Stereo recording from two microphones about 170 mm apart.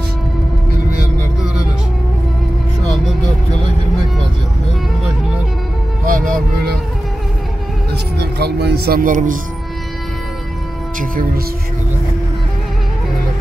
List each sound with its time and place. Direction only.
6.0 s music: 55° right (ahead or behind)
7.9 s music: 75° right (ahead or behind); by 9.4 s 50° right (ahead or behind)
11.0 s speech: 55° right (ahead or behind)